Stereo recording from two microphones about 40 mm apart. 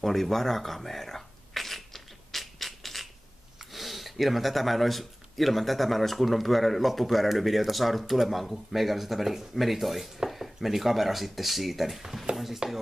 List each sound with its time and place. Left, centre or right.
0.0 s speech: centre
2.3 s a sound: centre
3.7 s speech: centre
12.6 s speech: right